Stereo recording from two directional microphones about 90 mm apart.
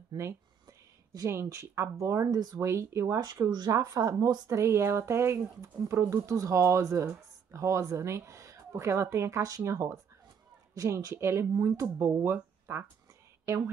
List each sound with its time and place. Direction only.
0.2 s speech: 35° right (ahead or behind)
3.2 s speech: 50° right (ahead or behind); by 12.8 s 25° right (ahead or behind)